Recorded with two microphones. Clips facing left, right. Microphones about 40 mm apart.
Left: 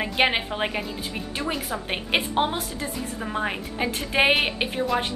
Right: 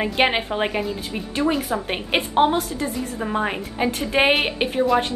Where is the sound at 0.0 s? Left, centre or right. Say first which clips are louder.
Right 3 dB; centre.